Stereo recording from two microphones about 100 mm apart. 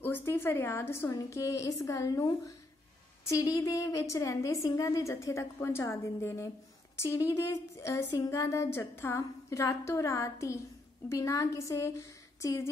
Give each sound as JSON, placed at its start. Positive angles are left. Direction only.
{"t": 0.0, "sound": "a woman's voice", "side_deg": 25}
{"t": 3.3, "sound": "a woman's voice", "side_deg": 30}